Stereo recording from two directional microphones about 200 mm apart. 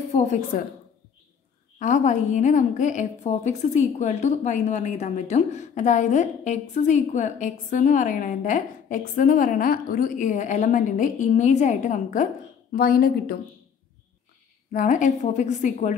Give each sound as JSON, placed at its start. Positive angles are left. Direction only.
{"t": 0.1, "sound": "a woman's voice", "side_deg": 35}
{"t": 1.8, "sound": "a woman's voice", "side_deg": 40}
{"t": 14.7, "sound": "a woman's voice", "side_deg": 40}